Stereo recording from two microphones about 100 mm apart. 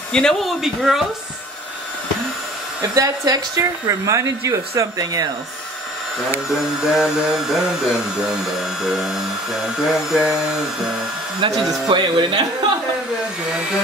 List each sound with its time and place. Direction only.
0.1 s speech: 5° left (ahead or behind)
2.8 s speech: 40° right (ahead or behind)
6.5 s speech: 5° right (ahead or behind)
11.4 s speech: 50° right (ahead or behind)